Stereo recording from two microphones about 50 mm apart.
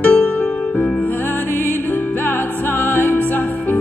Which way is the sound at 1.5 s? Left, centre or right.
Left.